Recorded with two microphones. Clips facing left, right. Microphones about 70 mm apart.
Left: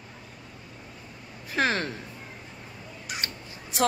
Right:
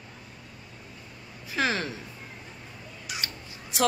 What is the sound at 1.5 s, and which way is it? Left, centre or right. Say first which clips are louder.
Speech: left 2 dB; left.